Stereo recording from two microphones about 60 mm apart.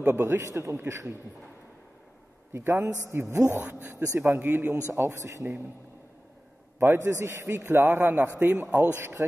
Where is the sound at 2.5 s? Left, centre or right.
Right.